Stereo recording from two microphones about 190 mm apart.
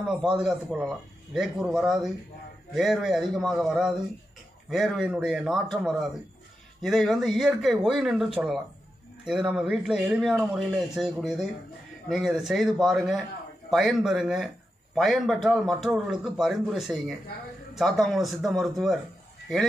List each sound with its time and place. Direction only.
0.0 s speech: centre (ahead or behind)